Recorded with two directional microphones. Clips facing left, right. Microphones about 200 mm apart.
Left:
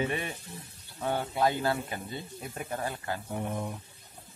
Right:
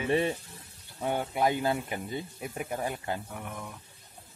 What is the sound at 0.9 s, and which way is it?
Speech, 15° right (ahead or behind).